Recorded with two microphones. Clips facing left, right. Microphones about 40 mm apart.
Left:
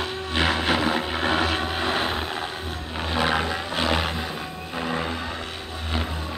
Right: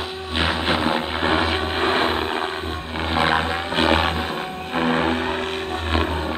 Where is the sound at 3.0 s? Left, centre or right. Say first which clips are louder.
Right 4 dB; right.